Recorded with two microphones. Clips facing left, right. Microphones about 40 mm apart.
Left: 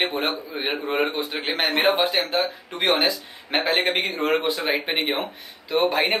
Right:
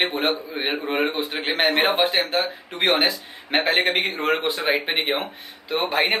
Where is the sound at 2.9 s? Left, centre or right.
Right.